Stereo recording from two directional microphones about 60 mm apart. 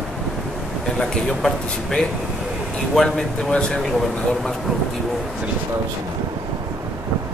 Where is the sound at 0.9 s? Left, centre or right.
Centre.